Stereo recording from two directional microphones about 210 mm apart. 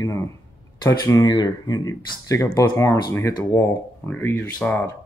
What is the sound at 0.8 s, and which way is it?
Speech, 15° left (ahead or behind).